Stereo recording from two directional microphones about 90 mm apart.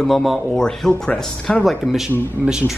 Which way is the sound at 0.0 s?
Centre (ahead or behind).